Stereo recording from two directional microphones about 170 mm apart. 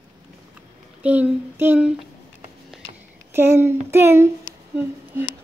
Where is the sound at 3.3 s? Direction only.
15° right (ahead or behind).